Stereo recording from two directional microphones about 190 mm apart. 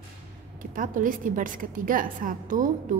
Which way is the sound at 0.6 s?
45° right (ahead or behind).